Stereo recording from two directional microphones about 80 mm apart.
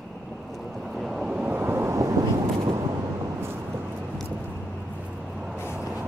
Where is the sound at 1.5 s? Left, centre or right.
Right.